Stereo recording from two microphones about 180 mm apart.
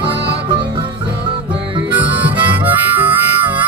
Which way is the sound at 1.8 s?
10° right (ahead or behind).